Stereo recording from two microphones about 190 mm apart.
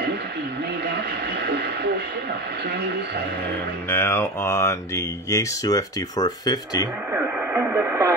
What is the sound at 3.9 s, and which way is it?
Speech, 10° left (ahead or behind).